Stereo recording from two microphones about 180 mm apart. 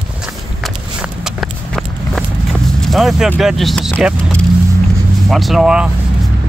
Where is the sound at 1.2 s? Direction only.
Centre (ahead or behind).